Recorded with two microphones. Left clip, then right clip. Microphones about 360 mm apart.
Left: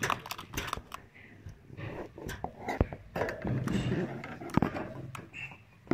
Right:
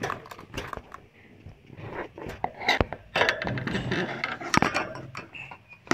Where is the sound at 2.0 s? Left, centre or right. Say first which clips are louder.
Right 9 dB; right.